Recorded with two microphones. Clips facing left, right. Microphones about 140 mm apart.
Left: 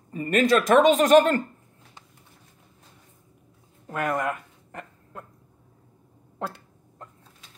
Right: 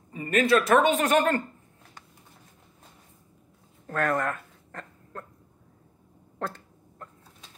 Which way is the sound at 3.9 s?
10° left (ahead or behind).